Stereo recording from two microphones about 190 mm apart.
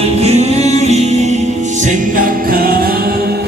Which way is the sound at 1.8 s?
45° right (ahead or behind).